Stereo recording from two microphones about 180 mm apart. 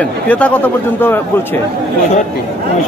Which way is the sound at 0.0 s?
10° left (ahead or behind).